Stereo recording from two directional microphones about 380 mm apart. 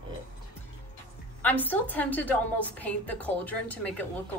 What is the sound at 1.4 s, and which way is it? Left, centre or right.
A woman's voice, centre.